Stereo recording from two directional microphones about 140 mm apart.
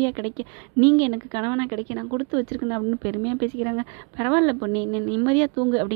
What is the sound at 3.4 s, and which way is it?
A woman's voice, 35° right (ahead or behind).